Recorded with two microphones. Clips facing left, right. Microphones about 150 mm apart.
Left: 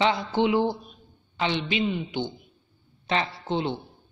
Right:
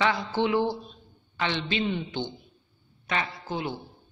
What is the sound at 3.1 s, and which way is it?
Speech, 30° left (ahead or behind).